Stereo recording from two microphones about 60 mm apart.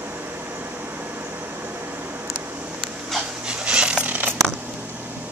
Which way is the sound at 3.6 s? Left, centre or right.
Centre.